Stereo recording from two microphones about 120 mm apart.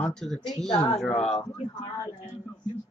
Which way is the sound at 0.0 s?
5° left (ahead or behind).